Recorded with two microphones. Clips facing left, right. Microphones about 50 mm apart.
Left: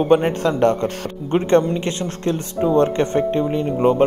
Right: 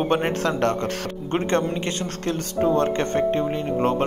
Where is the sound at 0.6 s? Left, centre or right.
Centre.